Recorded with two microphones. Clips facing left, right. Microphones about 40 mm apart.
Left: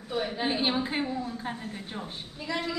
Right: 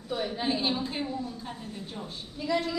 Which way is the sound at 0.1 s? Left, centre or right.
Centre.